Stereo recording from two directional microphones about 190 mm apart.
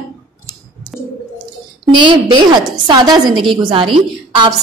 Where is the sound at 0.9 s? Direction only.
Centre (ahead or behind).